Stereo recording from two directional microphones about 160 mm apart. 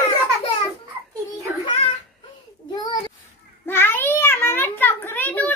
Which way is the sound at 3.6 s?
15° left (ahead or behind).